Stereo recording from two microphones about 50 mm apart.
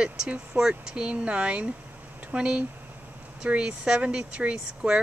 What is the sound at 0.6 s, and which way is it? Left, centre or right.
Speech, centre.